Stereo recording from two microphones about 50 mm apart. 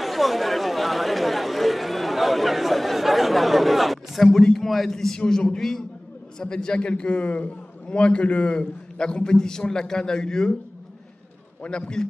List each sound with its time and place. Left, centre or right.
0.0 s chatter: centre
6.4 s a man's voice: centre
11.6 s a man's voice: centre